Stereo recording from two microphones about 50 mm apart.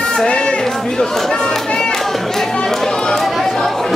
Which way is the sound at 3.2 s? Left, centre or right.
Centre.